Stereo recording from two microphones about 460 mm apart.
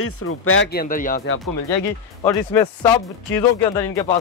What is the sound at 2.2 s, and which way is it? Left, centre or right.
Speech, centre.